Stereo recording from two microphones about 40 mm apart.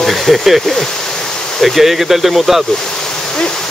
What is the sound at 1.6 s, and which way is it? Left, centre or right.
Speech, centre.